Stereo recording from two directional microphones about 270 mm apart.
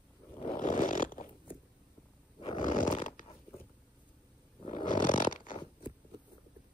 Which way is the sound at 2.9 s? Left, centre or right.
Left.